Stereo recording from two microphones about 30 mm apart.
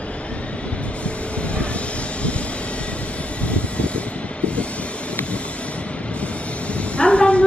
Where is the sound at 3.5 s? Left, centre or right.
Left.